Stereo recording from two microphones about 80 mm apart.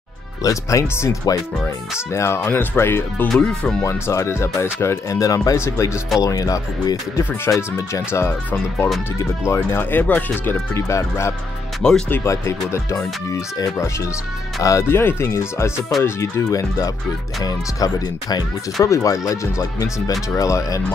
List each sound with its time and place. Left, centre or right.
0.4 s speech: left
3.3 s speech: centre
3.8 s speech: left
7.4 s speech: left
9.4 s speech: left
11.8 s speech: centre
12.3 s speech: left